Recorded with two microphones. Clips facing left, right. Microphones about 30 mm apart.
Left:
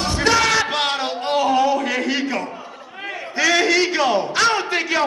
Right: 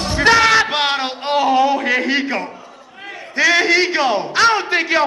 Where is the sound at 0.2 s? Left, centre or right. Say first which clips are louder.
Right 6 dB; right.